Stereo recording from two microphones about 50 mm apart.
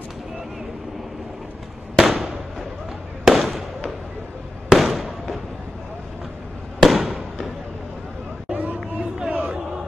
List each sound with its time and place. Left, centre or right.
2.0 s fireworks: centre
6.8 s fireworks: centre
8.5 s a sound: right
9.3 s battle cry: right